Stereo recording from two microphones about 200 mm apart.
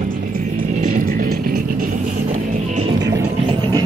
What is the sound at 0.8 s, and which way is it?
Music, 45° right (ahead or behind).